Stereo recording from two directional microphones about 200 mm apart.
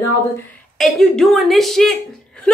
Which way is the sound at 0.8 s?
Centre (ahead or behind).